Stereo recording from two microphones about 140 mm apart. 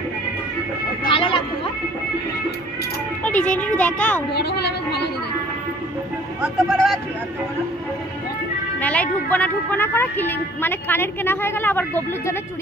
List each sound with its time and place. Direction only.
1.0 s vehicle: 40° left (ahead or behind)
3.3 s a woman's voice: 10° left (ahead or behind)
6.4 s speech: centre (ahead or behind)
8.7 s a woman's voice: 10° left (ahead or behind)